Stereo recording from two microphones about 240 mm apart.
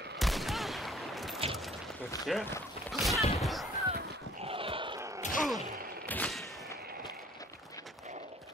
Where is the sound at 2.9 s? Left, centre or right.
Centre.